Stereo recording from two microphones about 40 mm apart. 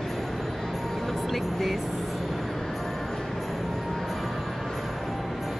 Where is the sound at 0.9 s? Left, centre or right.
Centre.